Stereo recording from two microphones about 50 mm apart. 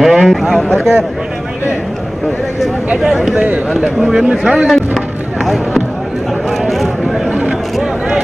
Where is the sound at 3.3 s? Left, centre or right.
Right.